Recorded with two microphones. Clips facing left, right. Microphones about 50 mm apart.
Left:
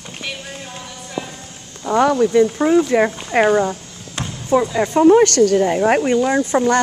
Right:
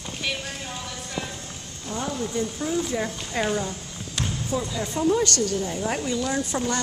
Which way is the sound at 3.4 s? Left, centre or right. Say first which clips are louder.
Left 11 dB; left.